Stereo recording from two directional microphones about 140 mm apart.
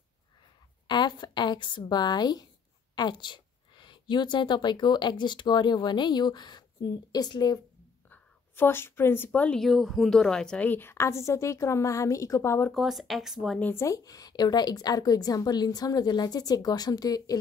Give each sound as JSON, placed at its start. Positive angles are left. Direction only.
{"t": 0.8, "sound": "a woman's voice", "side_deg": 35}
{"t": 8.1, "sound": "a woman's voice", "side_deg": 15}
{"t": 12.7, "sound": "speech", "side_deg": 0}
{"t": 13.6, "sound": "a woman's voice", "side_deg": 15}